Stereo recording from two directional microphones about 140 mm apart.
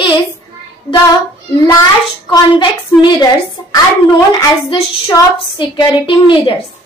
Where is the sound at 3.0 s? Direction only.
35° left (ahead or behind).